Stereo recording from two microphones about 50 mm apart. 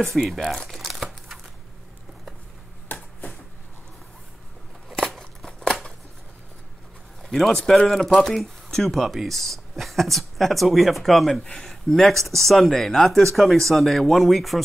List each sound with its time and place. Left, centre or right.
0.0 s speech: centre
0.7 s crumpling: centre
2.9 s a sound: left
4.9 s scissors: centre
7.2 s speech: centre
11.4 s speech: centre
11.7 s speech: centre